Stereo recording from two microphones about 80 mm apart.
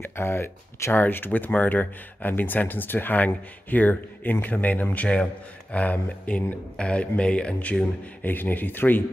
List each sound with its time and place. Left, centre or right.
0.0 s speech: left